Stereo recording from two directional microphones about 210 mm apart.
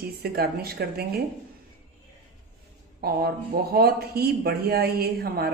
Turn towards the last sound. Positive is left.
turn(degrees=-45)  # may be behind; listen again after turning